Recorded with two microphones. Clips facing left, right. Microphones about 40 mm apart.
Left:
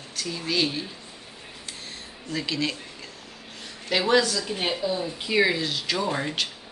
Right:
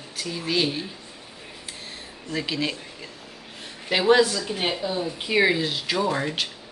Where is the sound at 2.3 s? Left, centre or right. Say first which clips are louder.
Right 1 dB; centre.